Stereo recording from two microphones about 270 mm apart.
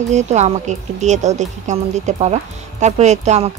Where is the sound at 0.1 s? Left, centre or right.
Right.